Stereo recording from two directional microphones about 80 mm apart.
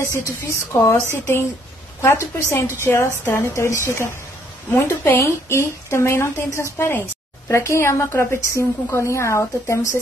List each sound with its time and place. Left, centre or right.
0.5 s a woman's voice: left
7.4 s a woman's voice: left